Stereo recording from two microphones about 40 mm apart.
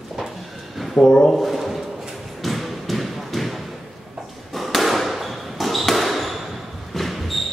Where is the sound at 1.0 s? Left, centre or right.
Left.